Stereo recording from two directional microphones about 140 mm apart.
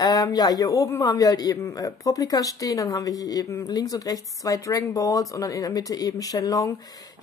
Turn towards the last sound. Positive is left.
turn(degrees=25)  # may be behind; listen again after turning